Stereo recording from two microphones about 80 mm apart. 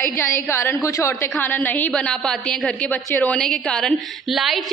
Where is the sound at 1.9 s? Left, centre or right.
Centre.